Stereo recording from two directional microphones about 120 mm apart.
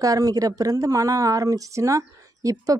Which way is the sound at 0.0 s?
30° right (ahead or behind).